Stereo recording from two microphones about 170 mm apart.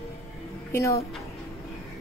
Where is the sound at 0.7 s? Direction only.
20° left (ahead or behind).